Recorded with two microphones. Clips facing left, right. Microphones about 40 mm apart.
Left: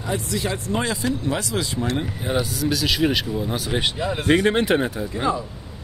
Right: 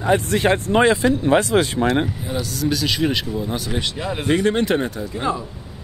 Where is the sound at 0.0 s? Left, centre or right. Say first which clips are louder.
Right 8 dB; right.